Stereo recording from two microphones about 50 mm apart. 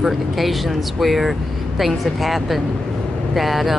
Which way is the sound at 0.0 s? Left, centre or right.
Centre.